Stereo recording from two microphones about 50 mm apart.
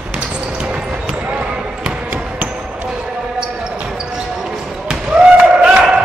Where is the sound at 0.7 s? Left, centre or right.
Right.